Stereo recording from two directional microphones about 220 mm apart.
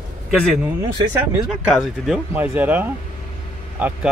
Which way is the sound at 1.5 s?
Centre (ahead or behind).